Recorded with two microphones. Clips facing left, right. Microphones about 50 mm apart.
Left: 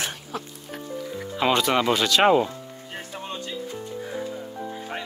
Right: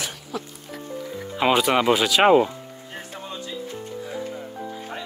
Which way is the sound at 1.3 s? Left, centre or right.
Centre.